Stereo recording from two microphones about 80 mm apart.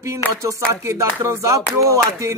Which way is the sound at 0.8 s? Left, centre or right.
Right.